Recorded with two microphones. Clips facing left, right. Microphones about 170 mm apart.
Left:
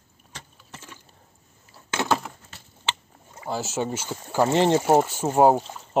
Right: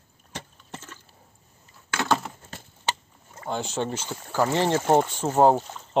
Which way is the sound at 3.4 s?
5° left (ahead or behind).